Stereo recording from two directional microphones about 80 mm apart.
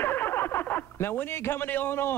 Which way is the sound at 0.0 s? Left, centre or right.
Left.